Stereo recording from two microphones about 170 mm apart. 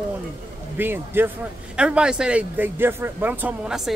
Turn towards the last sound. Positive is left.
turn(degrees=-5)  # may be behind; listen again after turning